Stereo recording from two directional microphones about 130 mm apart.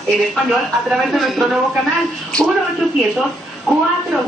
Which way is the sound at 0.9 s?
Centre (ahead or behind).